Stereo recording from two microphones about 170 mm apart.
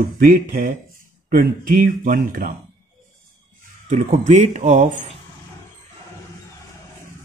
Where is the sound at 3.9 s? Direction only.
45° right (ahead or behind).